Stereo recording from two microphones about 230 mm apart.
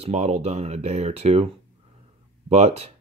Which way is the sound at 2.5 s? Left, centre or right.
Right.